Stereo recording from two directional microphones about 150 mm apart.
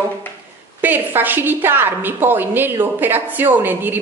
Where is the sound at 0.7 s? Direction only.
10° right (ahead or behind).